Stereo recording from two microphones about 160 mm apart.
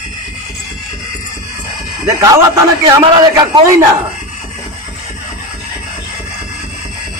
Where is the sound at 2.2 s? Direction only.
20° right (ahead or behind).